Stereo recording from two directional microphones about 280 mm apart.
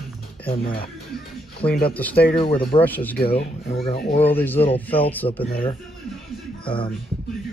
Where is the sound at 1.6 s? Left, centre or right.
Centre.